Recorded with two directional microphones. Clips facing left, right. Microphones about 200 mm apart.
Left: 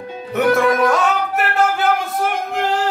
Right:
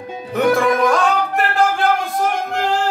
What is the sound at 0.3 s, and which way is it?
Music, 5° left (ahead or behind).